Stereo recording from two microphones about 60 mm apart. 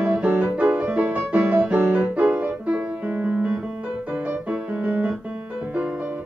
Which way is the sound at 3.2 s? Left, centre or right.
Right.